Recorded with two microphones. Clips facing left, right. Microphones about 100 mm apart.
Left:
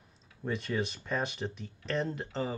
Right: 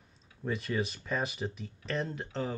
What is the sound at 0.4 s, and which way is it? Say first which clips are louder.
Speech: even; centre (ahead or behind).